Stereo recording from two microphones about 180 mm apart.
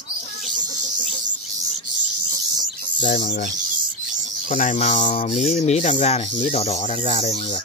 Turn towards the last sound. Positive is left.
turn(degrees=40)  # may be behind; listen again after turning